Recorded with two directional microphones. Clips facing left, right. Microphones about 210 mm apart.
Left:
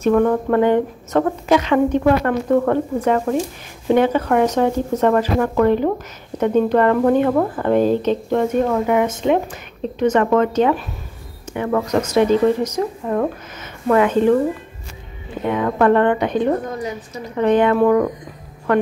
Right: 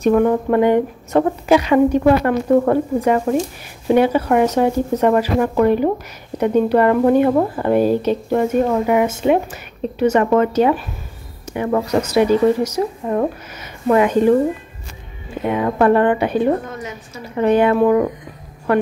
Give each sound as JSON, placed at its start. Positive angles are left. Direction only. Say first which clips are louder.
{"t": 0.0, "sound": "speech", "louder": "right 1 dB", "side_deg": -15}
{"t": 15.4, "sound": "speech", "louder": "right 1 dB", "side_deg": -15}
{"t": 16.7, "sound": "a woman's voice", "louder": "left 4 dB", "side_deg": 35}
{"t": 17.2, "sound": "speech", "louder": "right 1 dB", "side_deg": -10}